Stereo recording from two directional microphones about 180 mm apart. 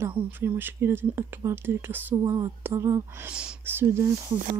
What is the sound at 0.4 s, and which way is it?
Speech, 10° right (ahead or behind).